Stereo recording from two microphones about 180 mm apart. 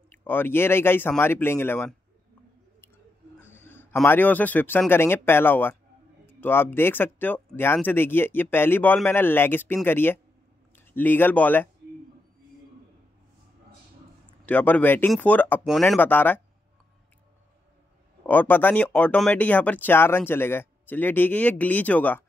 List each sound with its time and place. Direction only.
0.1 s speech: 10° left (ahead or behind)
3.3 s a man's voice: 10° left (ahead or behind)
14.4 s speech: 10° left (ahead or behind)
15.6 s speech: centre (ahead or behind)
18.2 s speech: 10° left (ahead or behind)